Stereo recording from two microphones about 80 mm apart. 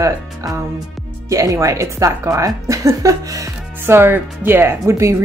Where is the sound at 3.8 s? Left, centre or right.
Right.